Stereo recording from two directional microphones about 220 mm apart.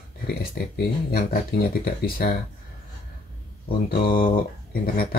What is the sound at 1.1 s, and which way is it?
Speech, 45° left (ahead or behind).